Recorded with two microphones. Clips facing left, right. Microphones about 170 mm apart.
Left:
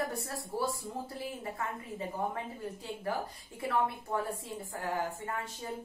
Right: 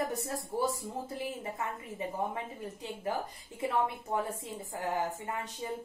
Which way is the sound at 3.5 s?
20° right (ahead or behind).